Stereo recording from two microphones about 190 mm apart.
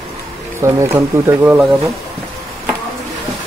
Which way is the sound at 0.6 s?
15° right (ahead or behind).